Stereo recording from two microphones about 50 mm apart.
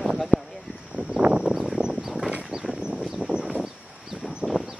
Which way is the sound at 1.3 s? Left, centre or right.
Centre.